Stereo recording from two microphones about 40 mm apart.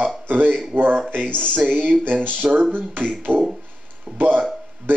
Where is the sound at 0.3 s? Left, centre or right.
Right.